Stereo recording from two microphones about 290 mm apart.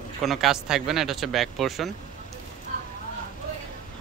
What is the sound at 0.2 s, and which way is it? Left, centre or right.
Speech, centre.